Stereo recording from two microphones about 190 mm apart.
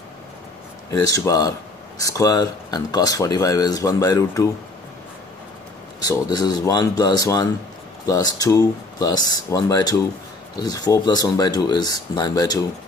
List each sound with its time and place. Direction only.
0.8 s speech: 20° left (ahead or behind)
6.0 s speech: 20° left (ahead or behind)